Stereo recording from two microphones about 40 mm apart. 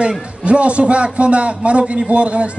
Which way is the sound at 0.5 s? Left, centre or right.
Right.